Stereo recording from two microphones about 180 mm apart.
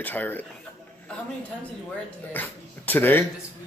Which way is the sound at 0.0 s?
10° left (ahead or behind).